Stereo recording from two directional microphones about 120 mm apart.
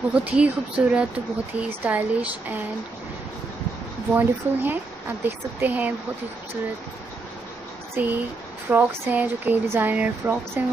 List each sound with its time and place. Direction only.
0.1 s speech: 10° right (ahead or behind)
4.1 s speech: 15° right (ahead or behind)
7.9 s speech: 15° right (ahead or behind)